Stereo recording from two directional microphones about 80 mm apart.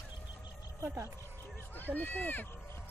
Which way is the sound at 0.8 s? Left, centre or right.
Right.